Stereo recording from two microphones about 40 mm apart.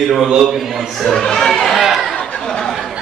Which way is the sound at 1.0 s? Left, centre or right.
Centre.